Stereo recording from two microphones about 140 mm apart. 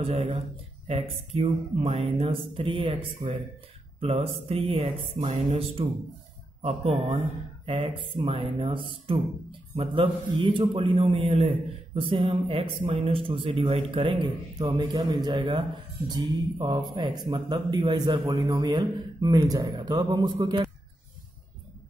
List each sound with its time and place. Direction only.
0.0 s a man's voice: 50° right (ahead or behind)
7.6 s a man's voice: 40° right (ahead or behind)